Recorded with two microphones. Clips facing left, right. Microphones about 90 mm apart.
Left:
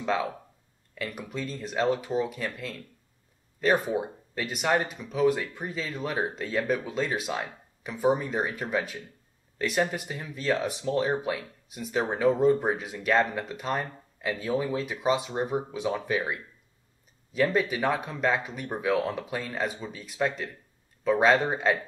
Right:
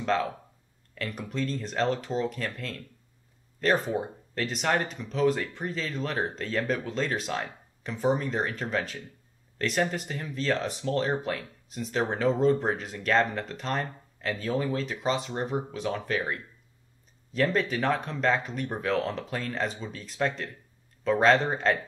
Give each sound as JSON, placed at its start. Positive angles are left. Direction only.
{"t": 0.0, "sound": "speech", "side_deg": 10}